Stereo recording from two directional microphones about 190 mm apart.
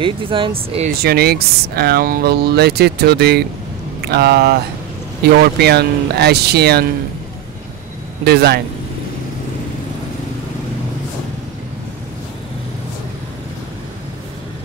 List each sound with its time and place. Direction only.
0.0 s speech: 25° right (ahead or behind)
0.8 s speech: 55° right (ahead or behind)
8.2 s speech: 60° right (ahead or behind)